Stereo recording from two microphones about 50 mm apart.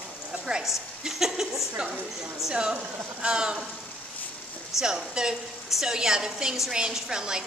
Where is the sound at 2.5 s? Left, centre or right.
Right.